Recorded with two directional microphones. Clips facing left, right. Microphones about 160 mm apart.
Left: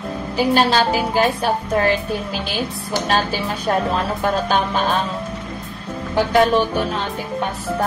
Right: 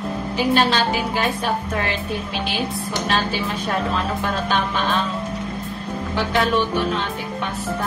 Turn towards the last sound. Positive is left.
turn(degrees=45)  # may be behind; listen again after turning